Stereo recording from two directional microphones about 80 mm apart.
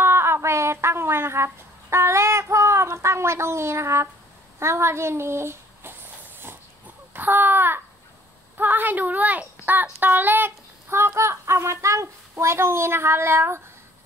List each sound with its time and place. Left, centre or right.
0.0 s a sound: right
4.6 s speech: right
7.2 s a child's voice: right